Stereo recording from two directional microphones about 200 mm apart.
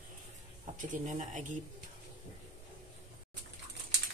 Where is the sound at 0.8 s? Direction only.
40° right (ahead or behind).